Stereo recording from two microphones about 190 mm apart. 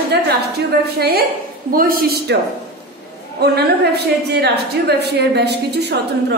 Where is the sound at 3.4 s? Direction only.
60° right (ahead or behind).